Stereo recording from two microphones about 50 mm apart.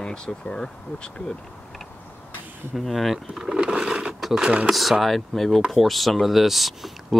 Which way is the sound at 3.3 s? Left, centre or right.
Centre.